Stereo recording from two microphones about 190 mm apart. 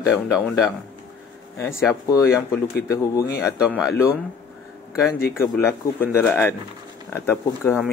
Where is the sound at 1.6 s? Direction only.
15° left (ahead or behind).